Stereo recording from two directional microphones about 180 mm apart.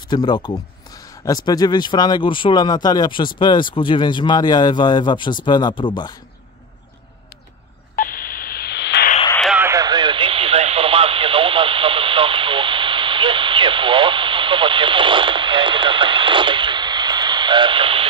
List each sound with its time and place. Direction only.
0.1 s speech: 25° left (ahead or behind)
7.9 s telephone dialing: 50° left (ahead or behind); by 9.1 s 70° left (ahead or behind)
9.6 s radio: 15° right (ahead or behind)